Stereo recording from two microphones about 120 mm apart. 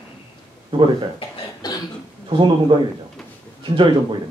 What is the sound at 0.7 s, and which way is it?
Speech, 40° right (ahead or behind).